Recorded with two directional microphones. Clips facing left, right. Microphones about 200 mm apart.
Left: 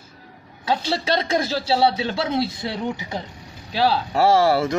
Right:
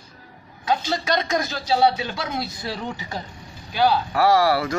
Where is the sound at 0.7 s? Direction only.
30° left (ahead or behind).